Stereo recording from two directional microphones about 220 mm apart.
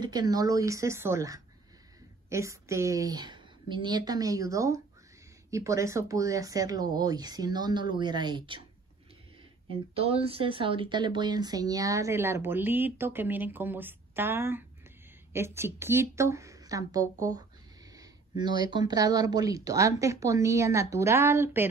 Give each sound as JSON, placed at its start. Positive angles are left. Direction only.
{"t": 0.0, "sound": "speech", "side_deg": -20}
{"t": 9.7, "sound": "speech", "side_deg": -25}